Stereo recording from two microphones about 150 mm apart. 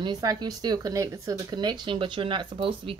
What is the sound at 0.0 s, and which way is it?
Speech, 25° right (ahead or behind).